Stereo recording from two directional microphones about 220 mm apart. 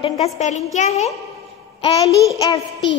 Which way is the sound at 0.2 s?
30° left (ahead or behind).